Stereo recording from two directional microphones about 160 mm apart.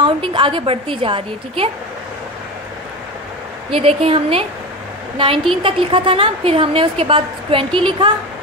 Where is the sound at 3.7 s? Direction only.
35° right (ahead or behind).